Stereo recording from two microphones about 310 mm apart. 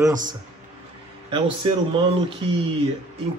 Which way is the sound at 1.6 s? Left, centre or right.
Centre.